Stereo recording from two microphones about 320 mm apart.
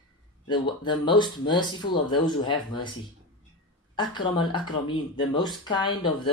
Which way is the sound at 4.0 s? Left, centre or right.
Centre.